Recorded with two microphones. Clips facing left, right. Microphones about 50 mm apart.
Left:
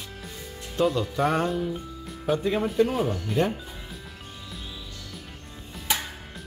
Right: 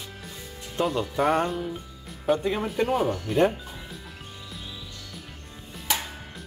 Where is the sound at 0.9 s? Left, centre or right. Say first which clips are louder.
Right 1 dB; centre.